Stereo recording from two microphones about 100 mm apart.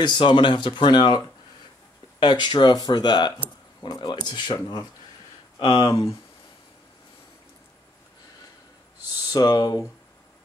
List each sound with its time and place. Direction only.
0.0 s speech: 50° left (ahead or behind)
5.6 s speech: 60° left (ahead or behind)
9.3 s speech: 40° left (ahead or behind)